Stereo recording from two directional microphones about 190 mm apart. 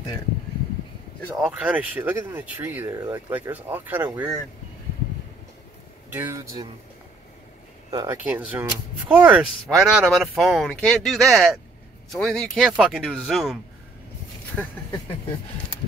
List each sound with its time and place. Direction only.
1.3 s speech: 5° right (ahead or behind)
6.1 s speech: 15° right (ahead or behind)
7.9 s speech: 20° right (ahead or behind)
8.3 s speech: 10° right (ahead or behind)